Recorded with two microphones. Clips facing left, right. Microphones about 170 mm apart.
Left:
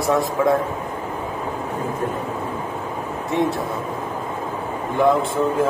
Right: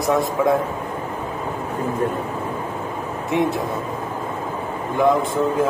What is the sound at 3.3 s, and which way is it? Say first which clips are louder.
Speech: right 1 dB; 20° right (ahead or behind).